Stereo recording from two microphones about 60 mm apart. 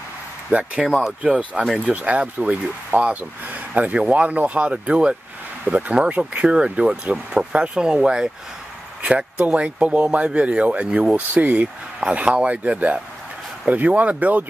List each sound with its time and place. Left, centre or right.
0.5 s speech: right